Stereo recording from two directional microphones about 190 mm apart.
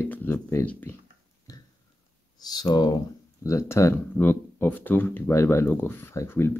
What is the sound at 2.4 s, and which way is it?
Speech, 20° left (ahead or behind).